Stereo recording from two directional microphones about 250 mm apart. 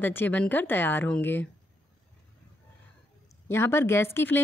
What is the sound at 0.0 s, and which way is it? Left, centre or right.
Speech, centre.